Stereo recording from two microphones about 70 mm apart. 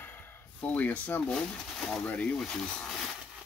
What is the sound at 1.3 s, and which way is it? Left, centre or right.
Speech, centre.